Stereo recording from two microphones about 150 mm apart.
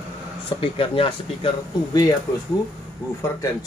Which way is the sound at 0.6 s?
35° left (ahead or behind).